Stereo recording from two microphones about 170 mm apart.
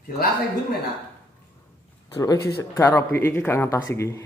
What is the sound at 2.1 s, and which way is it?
Speech, 20° left (ahead or behind).